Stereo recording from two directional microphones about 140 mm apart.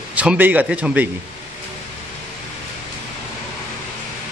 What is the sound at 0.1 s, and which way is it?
Speech, 10° right (ahead or behind).